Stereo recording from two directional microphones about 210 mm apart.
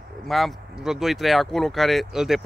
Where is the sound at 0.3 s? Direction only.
Centre (ahead or behind).